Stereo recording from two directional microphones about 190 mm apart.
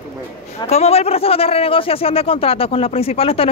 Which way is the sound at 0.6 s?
35° left (ahead or behind).